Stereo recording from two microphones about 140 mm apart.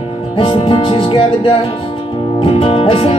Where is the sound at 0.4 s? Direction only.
40° left (ahead or behind).